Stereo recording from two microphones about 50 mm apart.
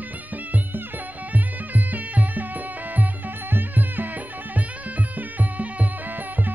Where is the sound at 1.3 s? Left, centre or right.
Right.